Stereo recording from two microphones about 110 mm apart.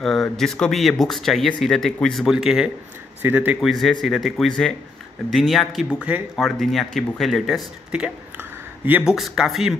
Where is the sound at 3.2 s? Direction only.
15° right (ahead or behind).